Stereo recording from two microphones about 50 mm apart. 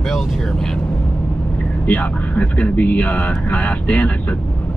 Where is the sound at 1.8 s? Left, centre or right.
Left.